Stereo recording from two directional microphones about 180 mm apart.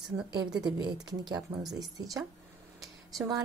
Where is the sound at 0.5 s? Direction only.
25° right (ahead or behind).